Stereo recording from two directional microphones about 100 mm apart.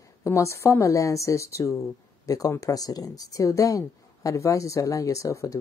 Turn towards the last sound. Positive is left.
turn(degrees=35)  # may be behind; listen again after turning